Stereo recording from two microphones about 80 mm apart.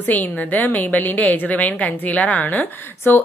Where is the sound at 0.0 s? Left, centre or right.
Left.